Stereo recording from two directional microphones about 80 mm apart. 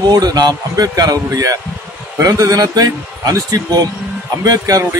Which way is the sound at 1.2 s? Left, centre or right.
Right.